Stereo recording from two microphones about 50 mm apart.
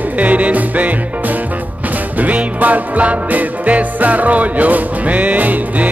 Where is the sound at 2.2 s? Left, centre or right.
Right.